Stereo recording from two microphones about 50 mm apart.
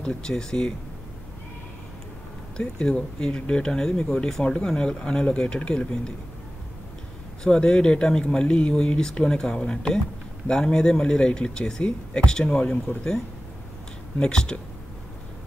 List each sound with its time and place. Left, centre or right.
0.2 s speech: centre
2.5 s speech: centre
7.4 s speech: centre
14.2 s speech: centre